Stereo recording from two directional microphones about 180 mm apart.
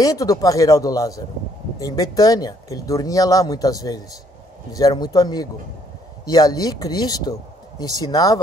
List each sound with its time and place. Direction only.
0.0 s speech: 20° left (ahead or behind)